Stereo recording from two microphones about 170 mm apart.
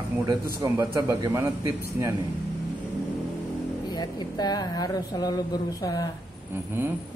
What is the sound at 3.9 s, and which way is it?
Speech, 25° left (ahead or behind).